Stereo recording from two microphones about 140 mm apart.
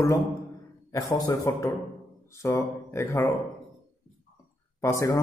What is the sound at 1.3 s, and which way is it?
A man's voice, 20° left (ahead or behind).